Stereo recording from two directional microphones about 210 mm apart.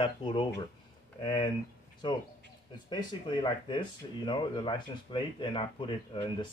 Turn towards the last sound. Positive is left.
turn(degrees=25)  # may be behind; listen again after turning